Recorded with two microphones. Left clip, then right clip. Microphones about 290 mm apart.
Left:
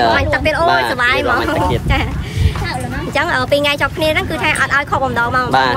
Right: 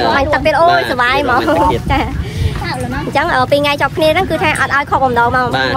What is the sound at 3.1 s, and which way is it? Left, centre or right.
A woman's voice, centre.